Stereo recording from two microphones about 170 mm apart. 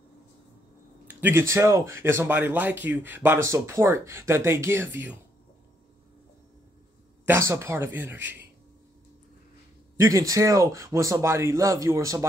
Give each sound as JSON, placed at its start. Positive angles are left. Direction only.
{"t": 1.0, "sound": "speech", "side_deg": -15}
{"t": 7.2, "sound": "speech", "side_deg": -15}
{"t": 9.9, "sound": "speech", "side_deg": -20}